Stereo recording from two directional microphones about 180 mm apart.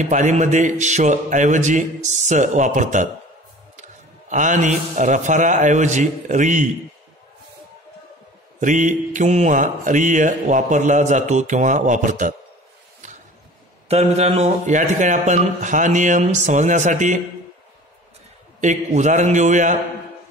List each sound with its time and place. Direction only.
0.0 s mantra: 45° right (ahead or behind)
4.3 s mantra: 45° right (ahead or behind)
8.5 s mantra: 45° right (ahead or behind)
13.8 s mantra: 35° right (ahead or behind)
18.6 s a man's voice: 45° right (ahead or behind)